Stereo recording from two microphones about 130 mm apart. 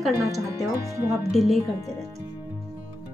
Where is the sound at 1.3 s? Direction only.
Centre (ahead or behind).